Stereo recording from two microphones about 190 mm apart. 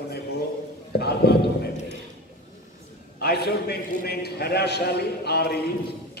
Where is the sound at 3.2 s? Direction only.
55° left (ahead or behind).